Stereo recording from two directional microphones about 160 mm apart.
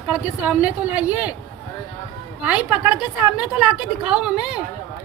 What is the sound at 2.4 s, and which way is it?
A woman's voice, 5° right (ahead or behind).